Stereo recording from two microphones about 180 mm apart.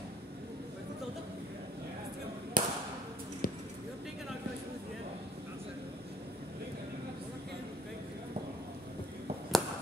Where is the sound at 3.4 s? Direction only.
50° left (ahead or behind).